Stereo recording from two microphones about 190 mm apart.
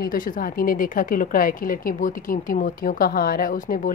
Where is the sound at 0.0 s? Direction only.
50° left (ahead or behind).